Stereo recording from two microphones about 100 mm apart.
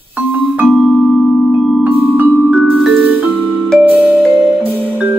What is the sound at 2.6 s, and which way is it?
Music, centre (ahead or behind).